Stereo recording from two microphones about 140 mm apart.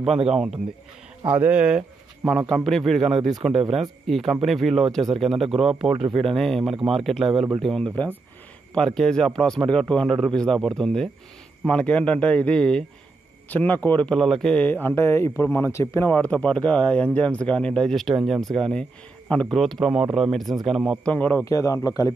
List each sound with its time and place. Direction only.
0.3 s a man's voice: 5° right (ahead or behind)
21.1 s speech: 10° left (ahead or behind)
21.5 s a man's voice: 25° left (ahead or behind)